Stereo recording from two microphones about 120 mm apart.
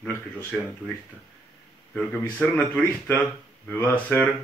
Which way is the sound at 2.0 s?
10° left (ahead or behind).